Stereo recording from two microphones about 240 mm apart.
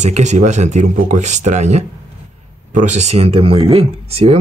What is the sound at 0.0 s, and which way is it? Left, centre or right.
Speech, right.